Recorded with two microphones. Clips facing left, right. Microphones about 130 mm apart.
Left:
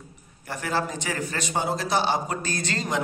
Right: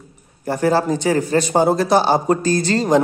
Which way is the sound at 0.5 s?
35° right (ahead or behind).